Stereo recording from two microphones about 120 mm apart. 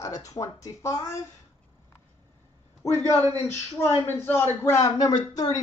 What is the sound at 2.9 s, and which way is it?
Speech, 20° left (ahead or behind).